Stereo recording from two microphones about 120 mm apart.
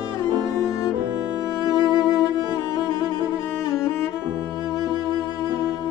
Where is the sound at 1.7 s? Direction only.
35° left (ahead or behind).